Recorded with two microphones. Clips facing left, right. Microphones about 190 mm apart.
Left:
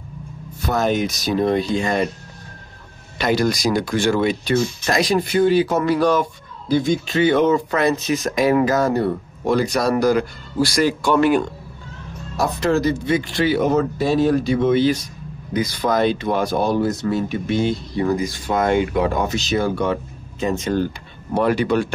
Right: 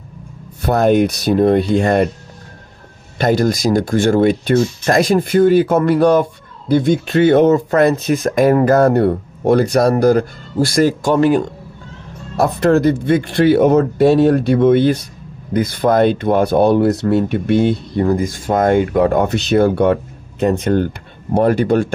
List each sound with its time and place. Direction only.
0.6 s speech: 60° right (ahead or behind)
3.2 s speech: 50° right (ahead or behind)
12.5 s speech: 55° right (ahead or behind)